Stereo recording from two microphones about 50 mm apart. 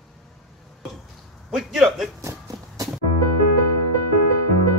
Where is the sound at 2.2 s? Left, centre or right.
Right.